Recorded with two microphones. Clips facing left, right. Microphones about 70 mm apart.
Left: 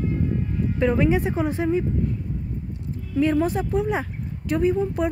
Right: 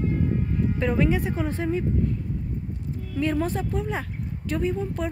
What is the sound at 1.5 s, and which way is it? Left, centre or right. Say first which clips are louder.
Speech: left 4 dB; centre.